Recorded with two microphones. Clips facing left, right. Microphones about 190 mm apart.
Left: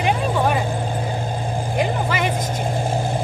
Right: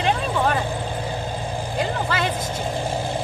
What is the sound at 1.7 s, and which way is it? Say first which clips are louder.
Speech: left 2 dB; 15° left (ahead or behind).